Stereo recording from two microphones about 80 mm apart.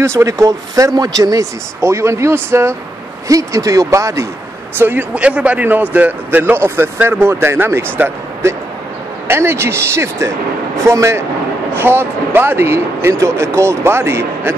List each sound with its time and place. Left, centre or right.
0.0 s speech: right
1.8 s speech: right
3.3 s speech: right
4.7 s a man's voice: right
5.1 s a man's voice: centre; by 14.5 s right